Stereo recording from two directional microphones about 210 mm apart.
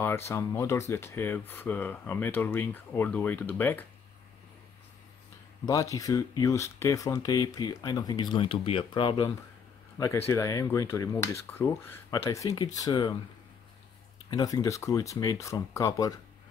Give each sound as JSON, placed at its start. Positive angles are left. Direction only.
{"t": 0.0, "sound": "speech", "side_deg": 10}
{"t": 5.7, "sound": "speech", "side_deg": 15}
{"t": 14.3, "sound": "speech", "side_deg": 15}